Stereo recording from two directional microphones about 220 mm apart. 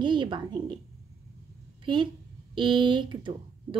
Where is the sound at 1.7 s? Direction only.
20° right (ahead or behind).